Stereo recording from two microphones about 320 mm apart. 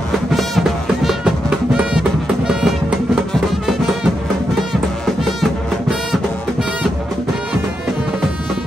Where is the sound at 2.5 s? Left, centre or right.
Centre.